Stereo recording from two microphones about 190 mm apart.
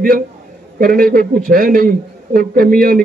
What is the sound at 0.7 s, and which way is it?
A man's voice, 50° right (ahead or behind).